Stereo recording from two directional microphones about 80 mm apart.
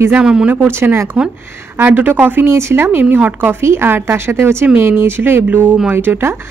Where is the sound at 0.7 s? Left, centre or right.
Right.